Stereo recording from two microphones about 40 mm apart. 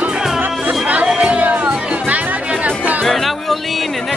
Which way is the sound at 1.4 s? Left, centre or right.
Right.